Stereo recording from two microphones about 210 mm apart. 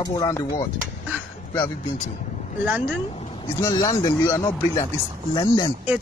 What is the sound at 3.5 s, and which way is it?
Speech, 15° left (ahead or behind).